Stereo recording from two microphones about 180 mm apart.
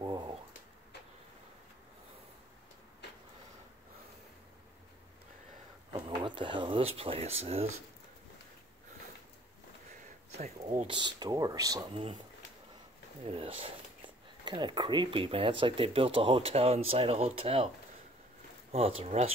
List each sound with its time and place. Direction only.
0.0 s pigeon: 25° right (ahead or behind)
5.9 s speech: 25° right (ahead or behind)
10.3 s speech: 40° right (ahead or behind)
10.9 s speech: 25° right (ahead or behind)
11.9 s speech: 30° right (ahead or behind)
13.2 s speech: 30° right (ahead or behind)
18.7 s speech: 35° right (ahead or behind)